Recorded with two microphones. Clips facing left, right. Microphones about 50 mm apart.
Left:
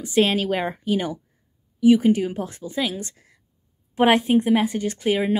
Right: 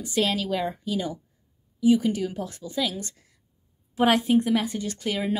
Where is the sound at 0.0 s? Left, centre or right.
Left.